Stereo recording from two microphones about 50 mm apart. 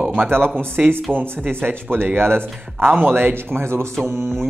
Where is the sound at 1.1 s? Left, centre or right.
Right.